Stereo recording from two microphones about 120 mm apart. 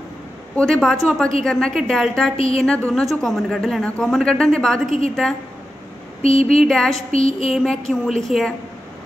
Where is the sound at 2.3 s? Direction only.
55° left (ahead or behind).